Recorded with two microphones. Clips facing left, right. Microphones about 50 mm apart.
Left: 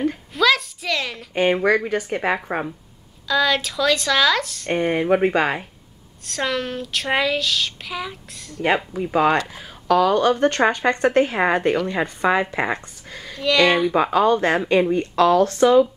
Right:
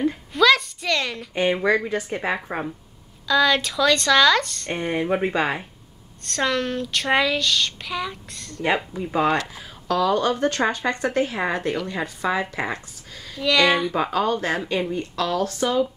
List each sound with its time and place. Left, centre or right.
0.0 s a sound: centre
1.3 s speech: left
2.1 s speech: centre
3.3 s speech: centre
4.7 s speech: centre
6.2 s speech: centre; by 10.1 s left
10.1 s speech: left
11.7 s speech: centre
12.0 s speech: left
13.3 s speech: centre
13.9 s speech: centre
14.2 s speech: left
14.6 s speech: left